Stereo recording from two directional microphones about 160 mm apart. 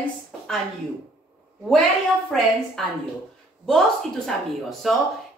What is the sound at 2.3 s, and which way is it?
Speech, centre (ahead or behind).